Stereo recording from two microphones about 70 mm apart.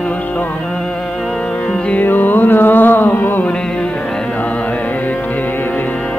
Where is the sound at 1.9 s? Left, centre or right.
Left.